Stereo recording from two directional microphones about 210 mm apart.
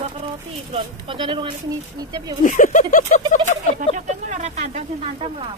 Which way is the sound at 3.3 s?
35° left (ahead or behind).